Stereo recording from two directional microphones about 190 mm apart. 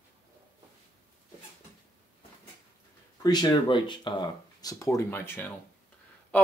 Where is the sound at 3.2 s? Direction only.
25° left (ahead or behind).